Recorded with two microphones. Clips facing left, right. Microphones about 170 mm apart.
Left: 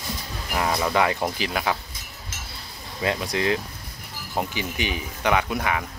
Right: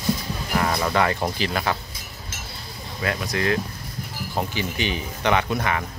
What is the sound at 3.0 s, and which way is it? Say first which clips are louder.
Speech: left 1 dB; 20° left (ahead or behind).